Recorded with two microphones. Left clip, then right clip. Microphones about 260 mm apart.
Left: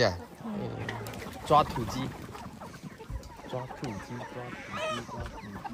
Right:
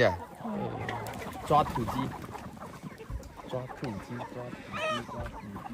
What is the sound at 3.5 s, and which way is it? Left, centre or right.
Music, centre.